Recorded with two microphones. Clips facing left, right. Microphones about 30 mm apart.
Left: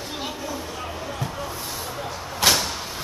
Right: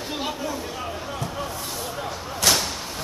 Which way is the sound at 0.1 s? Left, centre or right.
Centre.